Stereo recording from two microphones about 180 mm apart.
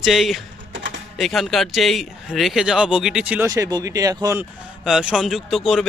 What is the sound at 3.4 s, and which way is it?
Speech, 20° right (ahead or behind).